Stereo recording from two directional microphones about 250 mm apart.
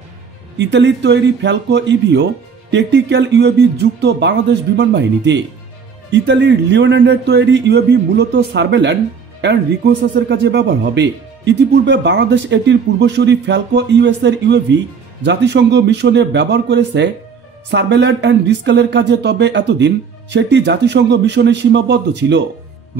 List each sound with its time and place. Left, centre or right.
0.6 s speech: right